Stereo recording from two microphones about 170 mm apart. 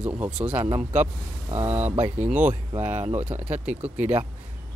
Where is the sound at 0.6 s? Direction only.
40° right (ahead or behind).